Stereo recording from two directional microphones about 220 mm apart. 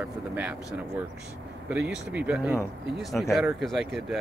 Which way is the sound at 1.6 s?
5° right (ahead or behind).